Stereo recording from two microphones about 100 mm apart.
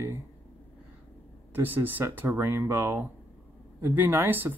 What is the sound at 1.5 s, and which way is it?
Speech, 20° right (ahead or behind).